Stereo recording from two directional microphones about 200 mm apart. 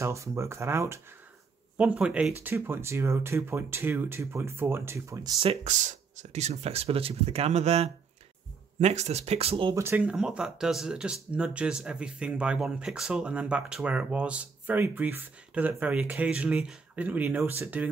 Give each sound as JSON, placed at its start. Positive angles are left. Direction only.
{"t": 0.0, "sound": "speech", "side_deg": -15}
{"t": 5.4, "sound": "speech", "side_deg": -30}
{"t": 9.8, "sound": "speech", "side_deg": -5}